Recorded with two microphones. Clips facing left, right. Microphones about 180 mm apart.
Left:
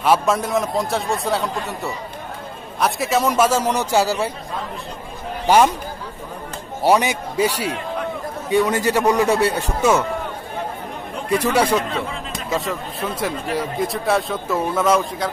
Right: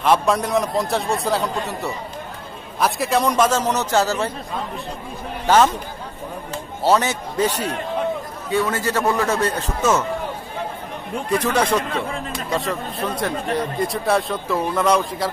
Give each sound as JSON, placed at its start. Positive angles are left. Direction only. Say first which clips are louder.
{"t": 0.0, "sound": "a man's voice", "louder": "even", "side_deg": 0}
{"t": 5.5, "sound": "a man's voice", "louder": "left 1 dB", "side_deg": 15}
{"t": 6.8, "sound": "a man's voice", "louder": "left 1 dB", "side_deg": 15}
{"t": 11.3, "sound": "a man's voice", "louder": "left 2 dB", "side_deg": 10}